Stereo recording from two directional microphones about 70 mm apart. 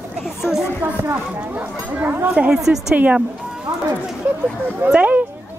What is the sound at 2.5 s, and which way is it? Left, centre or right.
Speech, centre.